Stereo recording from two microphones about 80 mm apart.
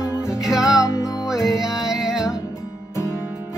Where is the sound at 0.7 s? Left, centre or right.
Left.